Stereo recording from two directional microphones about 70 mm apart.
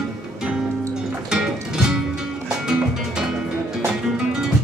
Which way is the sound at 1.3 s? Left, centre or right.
Centre.